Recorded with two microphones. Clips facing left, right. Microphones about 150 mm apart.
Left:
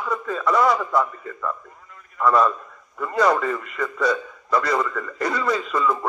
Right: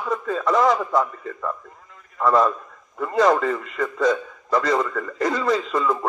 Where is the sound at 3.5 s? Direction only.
35° right (ahead or behind).